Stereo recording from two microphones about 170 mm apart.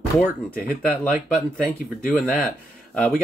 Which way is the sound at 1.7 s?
5° left (ahead or behind).